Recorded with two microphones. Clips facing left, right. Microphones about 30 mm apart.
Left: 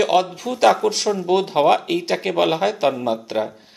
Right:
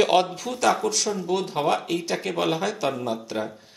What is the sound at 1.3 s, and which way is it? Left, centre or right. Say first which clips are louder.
A man's voice: left 9 dB; left.